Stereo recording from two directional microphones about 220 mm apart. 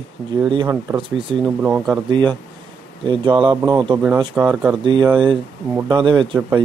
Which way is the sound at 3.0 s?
20° right (ahead or behind).